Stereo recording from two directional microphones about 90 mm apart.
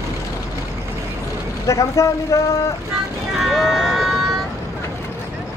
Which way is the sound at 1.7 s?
35° left (ahead or behind).